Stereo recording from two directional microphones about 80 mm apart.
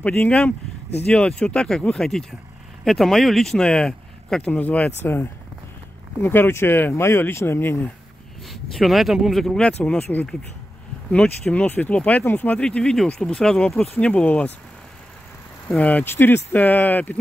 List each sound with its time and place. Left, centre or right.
0.2 s speech: centre
8.5 s speech: centre; by 12.5 s left
12.5 s speech: centre
15.8 s speech: left